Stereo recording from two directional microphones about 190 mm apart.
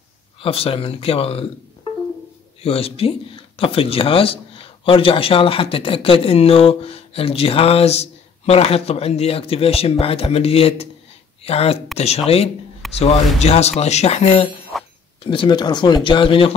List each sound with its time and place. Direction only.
0.4 s speech: 30° left (ahead or behind)
2.6 s speech: 30° left (ahead or behind)
14.7 s a sound: centre (ahead or behind)
15.2 s speech: 25° left (ahead or behind)